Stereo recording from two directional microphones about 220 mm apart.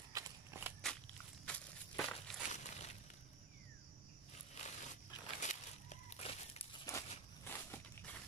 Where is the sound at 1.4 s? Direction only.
5° left (ahead or behind).